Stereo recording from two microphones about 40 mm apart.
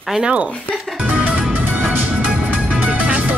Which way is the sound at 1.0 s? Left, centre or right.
Right.